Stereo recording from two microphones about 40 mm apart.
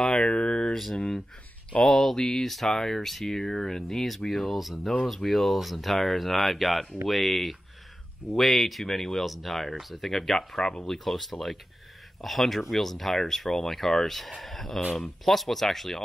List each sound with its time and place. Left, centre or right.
0.0 s a sound: left
0.9 s speech: centre
1.8 s speech: centre